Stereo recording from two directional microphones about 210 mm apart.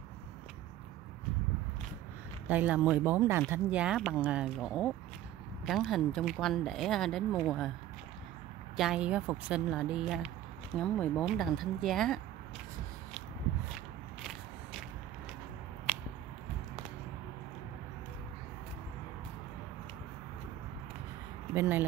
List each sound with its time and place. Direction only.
2.4 s speech: 5° right (ahead or behind)
8.7 s speech: 5° right (ahead or behind)
21.5 s speech: 10° right (ahead or behind)